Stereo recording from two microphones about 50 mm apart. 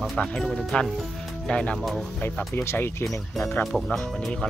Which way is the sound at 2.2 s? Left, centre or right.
Left.